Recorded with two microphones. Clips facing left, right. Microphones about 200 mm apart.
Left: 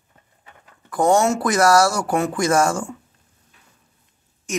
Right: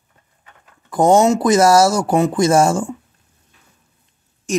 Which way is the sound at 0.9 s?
20° right (ahead or behind).